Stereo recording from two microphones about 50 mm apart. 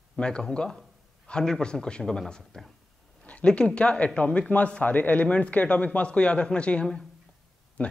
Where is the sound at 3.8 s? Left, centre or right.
Left.